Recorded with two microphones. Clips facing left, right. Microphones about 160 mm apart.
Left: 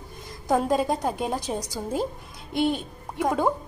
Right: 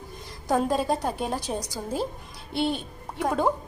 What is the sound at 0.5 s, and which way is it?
A woman's voice, 10° left (ahead or behind).